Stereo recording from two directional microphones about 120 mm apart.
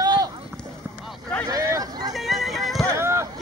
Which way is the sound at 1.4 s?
30° right (ahead or behind).